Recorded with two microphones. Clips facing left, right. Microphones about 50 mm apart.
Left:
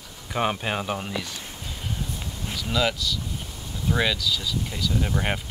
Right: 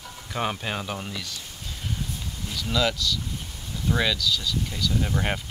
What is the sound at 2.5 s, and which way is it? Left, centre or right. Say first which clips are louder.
Speech: even; centre.